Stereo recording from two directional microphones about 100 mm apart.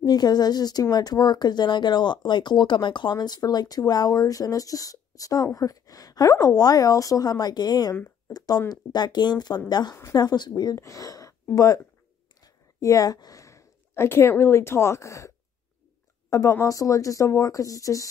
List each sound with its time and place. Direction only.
0.0 s speech: 40° left (ahead or behind)